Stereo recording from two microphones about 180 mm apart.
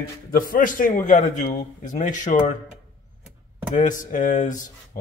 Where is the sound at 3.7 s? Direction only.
45° left (ahead or behind).